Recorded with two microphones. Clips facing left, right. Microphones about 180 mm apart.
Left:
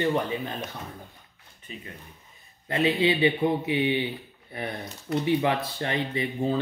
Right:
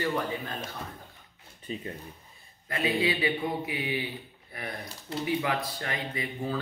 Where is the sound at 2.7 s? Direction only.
25° left (ahead or behind).